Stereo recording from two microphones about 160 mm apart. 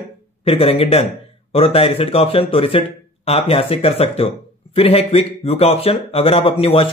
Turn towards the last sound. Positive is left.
turn(degrees=35)  # may be behind; listen again after turning